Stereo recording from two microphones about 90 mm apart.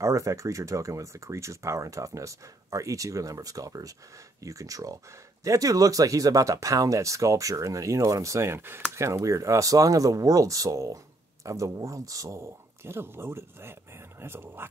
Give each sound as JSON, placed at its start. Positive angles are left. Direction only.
{"t": 0.0, "sound": "speech", "side_deg": -35}